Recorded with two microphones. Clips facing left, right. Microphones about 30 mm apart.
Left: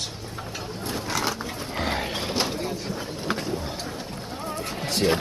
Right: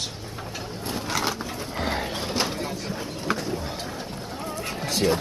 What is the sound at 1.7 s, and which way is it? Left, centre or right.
Mechanisms, centre.